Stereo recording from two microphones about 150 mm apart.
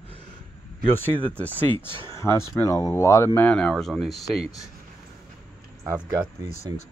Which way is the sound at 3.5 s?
5° left (ahead or behind).